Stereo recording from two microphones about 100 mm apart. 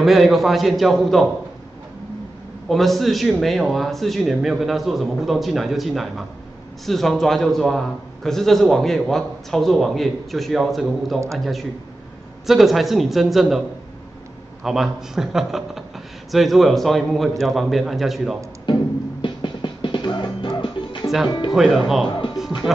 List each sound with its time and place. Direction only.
0.0 s a man's voice: centre (ahead or behind)
2.7 s a man's voice: centre (ahead or behind)
14.6 s a man's voice: 5° right (ahead or behind)
19.2 s music: 50° left (ahead or behind)
21.5 s a man's voice: centre (ahead or behind)